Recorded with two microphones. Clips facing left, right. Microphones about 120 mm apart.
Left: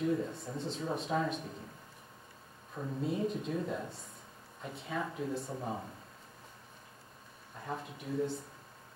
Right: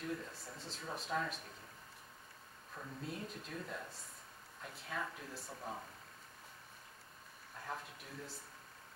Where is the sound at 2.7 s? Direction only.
Centre (ahead or behind).